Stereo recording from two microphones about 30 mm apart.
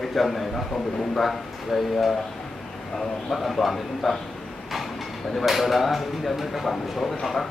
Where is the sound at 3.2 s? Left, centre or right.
Centre.